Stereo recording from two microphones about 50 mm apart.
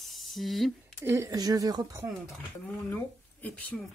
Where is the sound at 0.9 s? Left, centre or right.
Right.